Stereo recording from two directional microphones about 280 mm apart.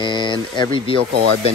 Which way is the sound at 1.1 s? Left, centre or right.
Right.